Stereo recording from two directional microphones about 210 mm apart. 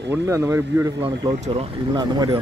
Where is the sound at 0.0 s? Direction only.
15° right (ahead or behind).